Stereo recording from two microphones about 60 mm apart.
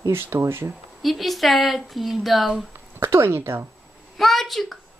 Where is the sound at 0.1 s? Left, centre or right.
Right.